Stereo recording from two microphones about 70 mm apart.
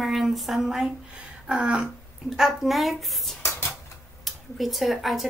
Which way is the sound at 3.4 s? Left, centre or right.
Left.